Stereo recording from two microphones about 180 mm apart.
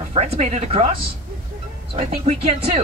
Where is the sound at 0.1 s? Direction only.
40° right (ahead or behind).